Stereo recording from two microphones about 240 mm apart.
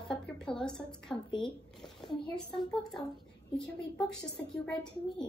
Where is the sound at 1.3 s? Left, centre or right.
Centre.